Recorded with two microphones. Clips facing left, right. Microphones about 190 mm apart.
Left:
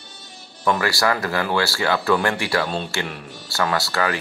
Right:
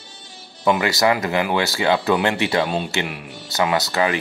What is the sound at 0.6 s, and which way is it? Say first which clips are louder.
Speech: right 3 dB; 20° right (ahead or behind).